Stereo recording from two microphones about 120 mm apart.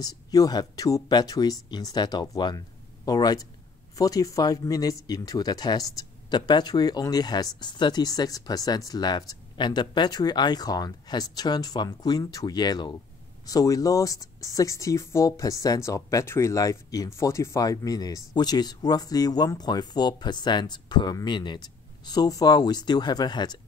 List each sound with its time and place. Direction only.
0.0 s speech: 30° left (ahead or behind)